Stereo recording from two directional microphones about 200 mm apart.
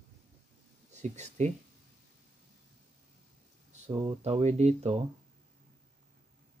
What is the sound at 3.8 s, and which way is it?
Speech, 30° right (ahead or behind).